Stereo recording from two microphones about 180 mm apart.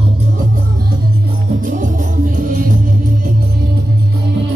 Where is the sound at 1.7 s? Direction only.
45° right (ahead or behind).